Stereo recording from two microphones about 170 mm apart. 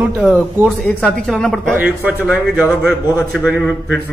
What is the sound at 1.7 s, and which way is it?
Speech, 10° right (ahead or behind).